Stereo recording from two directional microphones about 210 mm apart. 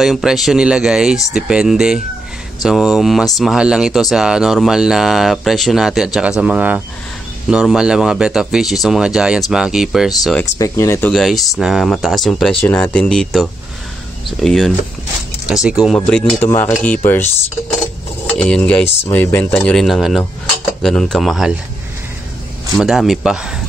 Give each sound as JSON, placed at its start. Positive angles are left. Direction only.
{"t": 0.0, "sound": "speech", "side_deg": 0}
{"t": 10.6, "sound": "speech", "side_deg": 10}
{"t": 18.4, "sound": "speech", "side_deg": 5}
{"t": 18.9, "sound": "speech", "side_deg": 30}
{"t": 19.1, "sound": "speech", "side_deg": 10}
{"t": 22.8, "sound": "speech", "side_deg": 0}